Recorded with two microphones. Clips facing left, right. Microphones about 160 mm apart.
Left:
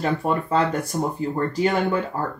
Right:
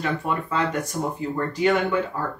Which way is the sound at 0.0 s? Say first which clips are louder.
Left 3 dB; 35° left (ahead or behind).